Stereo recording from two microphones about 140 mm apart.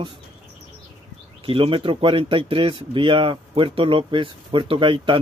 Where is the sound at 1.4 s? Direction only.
40° right (ahead or behind).